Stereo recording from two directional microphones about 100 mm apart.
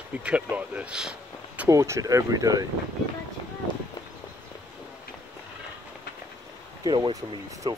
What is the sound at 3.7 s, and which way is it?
Run, 55° left (ahead or behind).